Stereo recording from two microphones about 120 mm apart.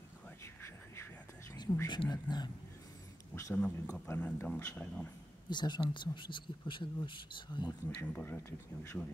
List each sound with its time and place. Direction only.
1.5 s a sound: 25° left (ahead or behind)
1.9 s speech: 35° left (ahead or behind)
3.5 s speech: 10° left (ahead or behind)
5.5 s speech: 40° left (ahead or behind)
7.9 s speech: 15° left (ahead or behind)